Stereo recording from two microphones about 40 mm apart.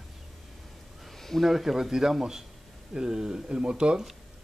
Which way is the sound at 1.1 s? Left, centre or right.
Centre.